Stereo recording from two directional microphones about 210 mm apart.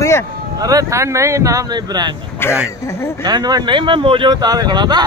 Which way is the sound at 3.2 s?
20° right (ahead or behind).